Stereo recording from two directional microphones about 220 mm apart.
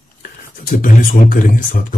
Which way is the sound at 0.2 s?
40° left (ahead or behind).